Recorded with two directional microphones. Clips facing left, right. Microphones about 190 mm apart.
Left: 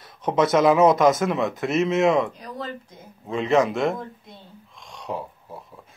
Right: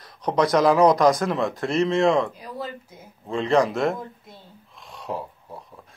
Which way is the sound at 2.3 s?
10° right (ahead or behind).